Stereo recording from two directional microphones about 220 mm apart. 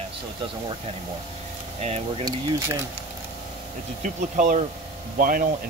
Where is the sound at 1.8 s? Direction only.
30° right (ahead or behind).